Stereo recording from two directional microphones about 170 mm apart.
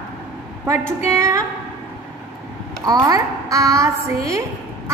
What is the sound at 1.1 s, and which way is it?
Speech, 20° right (ahead or behind).